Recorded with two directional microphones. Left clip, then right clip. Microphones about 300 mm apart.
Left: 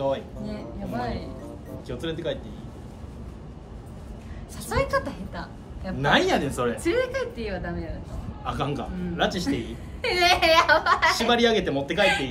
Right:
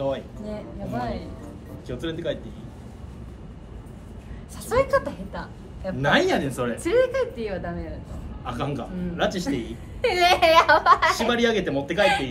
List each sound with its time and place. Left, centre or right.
0.5 s music: centre
1.9 s a man's voice: centre
4.6 s a woman's voice: centre
5.9 s a man's voice: centre
6.8 s speech: centre
8.5 s a man's voice: centre
10.0 s speech: centre
11.1 s a man's voice: centre